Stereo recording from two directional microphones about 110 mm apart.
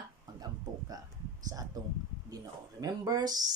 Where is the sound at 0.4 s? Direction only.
35° right (ahead or behind).